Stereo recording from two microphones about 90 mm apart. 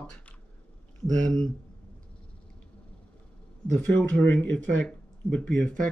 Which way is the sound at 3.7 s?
15° left (ahead or behind).